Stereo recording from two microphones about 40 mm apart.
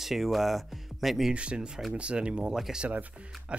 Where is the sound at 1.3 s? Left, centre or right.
Right.